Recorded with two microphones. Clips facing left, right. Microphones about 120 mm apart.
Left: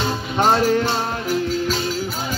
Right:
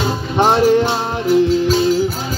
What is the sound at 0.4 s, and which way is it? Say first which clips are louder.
Music: right 5 dB; 15° right (ahead or behind).